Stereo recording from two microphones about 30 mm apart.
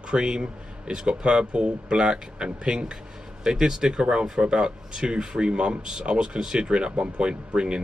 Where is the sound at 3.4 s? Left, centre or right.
Right.